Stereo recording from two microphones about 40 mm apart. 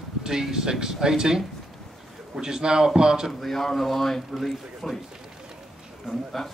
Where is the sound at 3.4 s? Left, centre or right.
Centre.